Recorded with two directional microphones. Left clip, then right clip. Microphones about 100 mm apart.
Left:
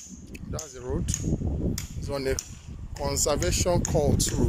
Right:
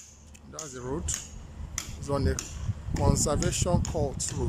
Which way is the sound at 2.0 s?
15° right (ahead or behind).